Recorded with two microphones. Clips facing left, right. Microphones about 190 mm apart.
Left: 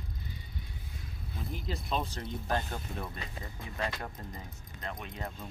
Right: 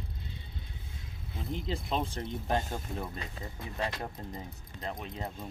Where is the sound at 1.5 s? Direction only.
25° right (ahead or behind).